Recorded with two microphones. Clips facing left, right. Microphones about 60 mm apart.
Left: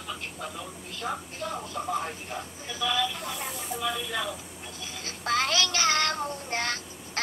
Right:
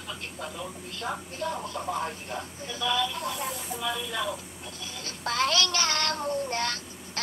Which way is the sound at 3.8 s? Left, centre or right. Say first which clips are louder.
Even; centre.